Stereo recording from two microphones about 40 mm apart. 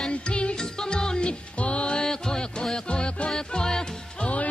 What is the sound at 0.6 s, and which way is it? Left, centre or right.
Music, centre.